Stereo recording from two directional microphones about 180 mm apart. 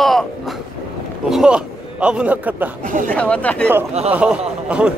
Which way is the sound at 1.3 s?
5° right (ahead or behind).